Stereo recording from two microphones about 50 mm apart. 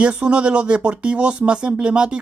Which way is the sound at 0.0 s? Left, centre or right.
Right.